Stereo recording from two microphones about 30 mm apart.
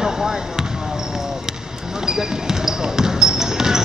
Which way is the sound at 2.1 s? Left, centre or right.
Centre.